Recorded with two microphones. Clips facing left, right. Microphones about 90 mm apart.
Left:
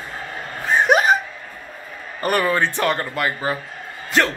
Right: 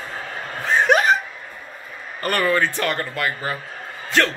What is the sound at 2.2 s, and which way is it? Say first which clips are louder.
A man's voice: left 1 dB; 15° left (ahead or behind).